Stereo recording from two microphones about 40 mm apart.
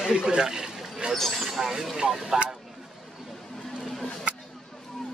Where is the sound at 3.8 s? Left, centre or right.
Centre.